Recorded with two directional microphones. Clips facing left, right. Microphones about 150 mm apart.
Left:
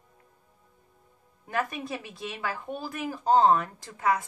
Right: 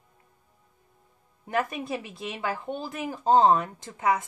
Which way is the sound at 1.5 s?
25° right (ahead or behind).